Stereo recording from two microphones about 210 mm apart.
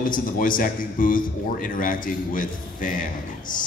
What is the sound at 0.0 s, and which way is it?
A man's voice, 40° left (ahead or behind).